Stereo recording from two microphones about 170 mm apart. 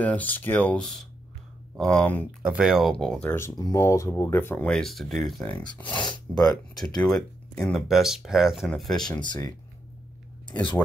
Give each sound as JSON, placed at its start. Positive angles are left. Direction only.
{"t": 0.0, "sound": "speech", "side_deg": 10}
{"t": 2.4, "sound": "speech", "side_deg": -5}
{"t": 3.3, "sound": "speech", "side_deg": 20}
{"t": 9.1, "sound": "speech", "side_deg": 25}